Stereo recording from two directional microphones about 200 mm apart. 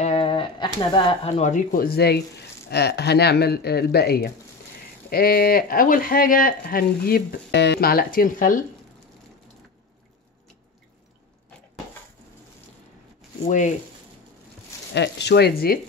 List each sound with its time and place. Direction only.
0.0 s speech: 30° left (ahead or behind)
13.5 s speech: 40° left (ahead or behind)
15.0 s speech: 60° left (ahead or behind)